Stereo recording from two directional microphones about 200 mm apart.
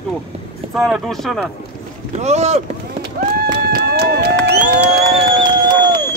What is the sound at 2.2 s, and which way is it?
Speech, 35° right (ahead or behind).